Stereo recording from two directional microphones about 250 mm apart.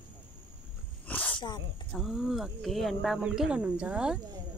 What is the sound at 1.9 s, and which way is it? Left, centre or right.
Speech, centre.